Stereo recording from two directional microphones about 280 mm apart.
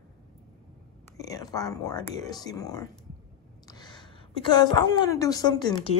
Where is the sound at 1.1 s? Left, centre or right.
Centre.